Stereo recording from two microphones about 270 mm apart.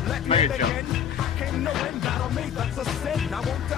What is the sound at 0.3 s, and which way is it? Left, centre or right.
Music, centre.